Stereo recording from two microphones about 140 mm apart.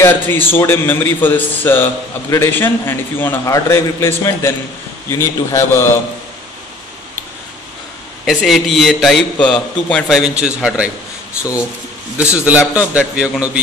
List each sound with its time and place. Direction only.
0.0 s a man's voice: 15° left (ahead or behind)
8.3 s a man's voice: centre (ahead or behind)
12.2 s a man's voice: 10° right (ahead or behind)